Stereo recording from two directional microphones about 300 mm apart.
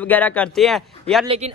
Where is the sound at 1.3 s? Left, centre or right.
Right.